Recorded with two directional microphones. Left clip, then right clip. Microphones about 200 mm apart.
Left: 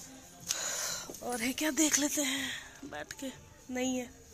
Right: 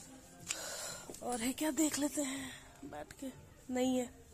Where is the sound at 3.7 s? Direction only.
25° right (ahead or behind).